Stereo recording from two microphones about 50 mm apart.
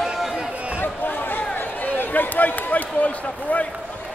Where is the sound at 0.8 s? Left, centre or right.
Left.